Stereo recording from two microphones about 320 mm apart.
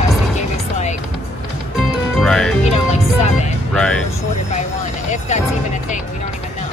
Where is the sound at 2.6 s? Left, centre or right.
Left.